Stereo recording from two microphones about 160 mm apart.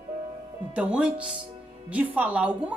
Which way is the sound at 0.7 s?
5° right (ahead or behind).